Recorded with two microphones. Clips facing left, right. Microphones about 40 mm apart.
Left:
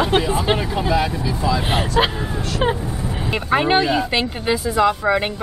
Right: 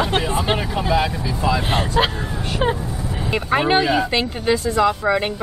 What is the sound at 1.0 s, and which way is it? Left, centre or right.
Speech, centre.